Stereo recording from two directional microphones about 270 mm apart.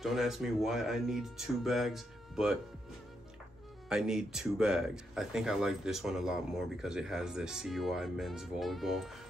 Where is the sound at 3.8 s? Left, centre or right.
Centre.